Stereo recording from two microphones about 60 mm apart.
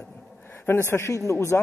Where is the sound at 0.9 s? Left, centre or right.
Left.